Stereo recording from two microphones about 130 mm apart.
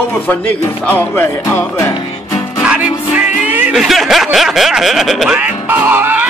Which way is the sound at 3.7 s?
Centre (ahead or behind).